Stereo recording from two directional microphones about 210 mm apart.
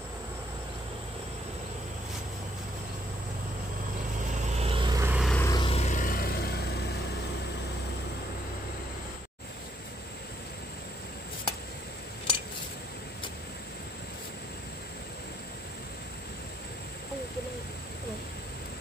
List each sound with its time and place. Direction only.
4.6 s vehicle: 25° right (ahead or behind)
5.1 s vehicle: centre (ahead or behind)
5.4 s vehicle: 20° left (ahead or behind); by 6.8 s 50° left (ahead or behind)